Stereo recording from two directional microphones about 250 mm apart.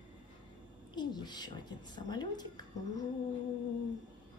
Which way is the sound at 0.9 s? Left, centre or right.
Centre.